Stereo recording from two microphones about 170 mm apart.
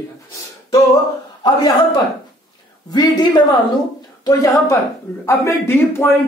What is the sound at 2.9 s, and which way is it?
Speech, 25° left (ahead or behind).